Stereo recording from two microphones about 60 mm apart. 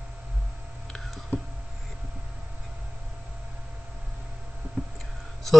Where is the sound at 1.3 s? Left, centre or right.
Left.